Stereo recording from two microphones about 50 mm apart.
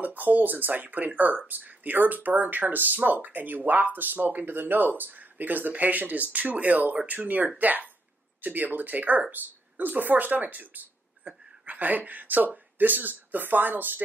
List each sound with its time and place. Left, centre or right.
0.0 s speech: right